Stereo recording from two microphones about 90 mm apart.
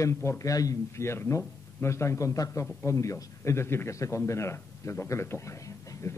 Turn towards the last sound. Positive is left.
turn(degrees=35)  # may be behind; listen again after turning